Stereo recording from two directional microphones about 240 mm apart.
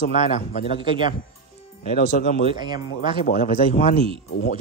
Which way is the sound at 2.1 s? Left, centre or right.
Left.